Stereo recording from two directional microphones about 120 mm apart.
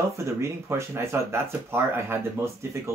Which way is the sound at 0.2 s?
25° right (ahead or behind).